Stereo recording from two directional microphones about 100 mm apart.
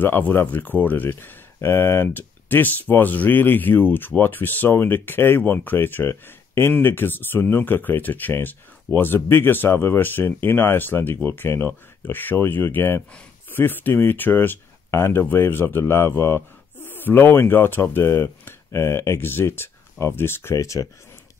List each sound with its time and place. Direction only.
0.0 s speech: 20° left (ahead or behind)